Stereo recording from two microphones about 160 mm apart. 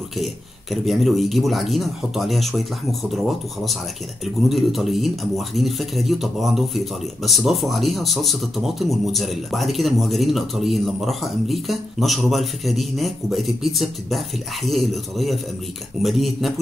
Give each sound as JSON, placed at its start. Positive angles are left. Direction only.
{"t": 0.2, "sound": "speech", "side_deg": 0}